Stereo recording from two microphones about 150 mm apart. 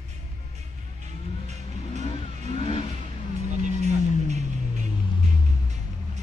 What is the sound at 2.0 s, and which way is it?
Vehicle, 45° left (ahead or behind).